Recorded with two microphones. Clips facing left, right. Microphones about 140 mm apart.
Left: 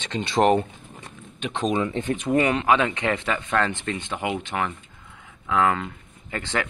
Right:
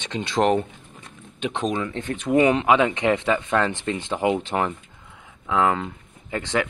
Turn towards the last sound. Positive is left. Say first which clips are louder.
# right 3 dB
turn(degrees=-15)  # may be behind; listen again after turning